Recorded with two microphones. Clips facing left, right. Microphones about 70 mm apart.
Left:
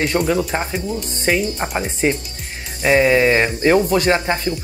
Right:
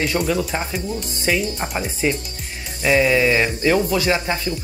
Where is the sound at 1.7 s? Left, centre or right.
Left.